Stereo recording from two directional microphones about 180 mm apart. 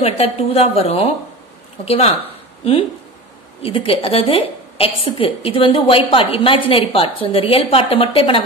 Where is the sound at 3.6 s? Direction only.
30° left (ahead or behind).